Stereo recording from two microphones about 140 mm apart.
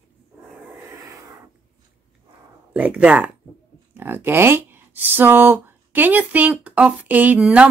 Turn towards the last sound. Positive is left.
turn(degrees=-10)  # may be behind; listen again after turning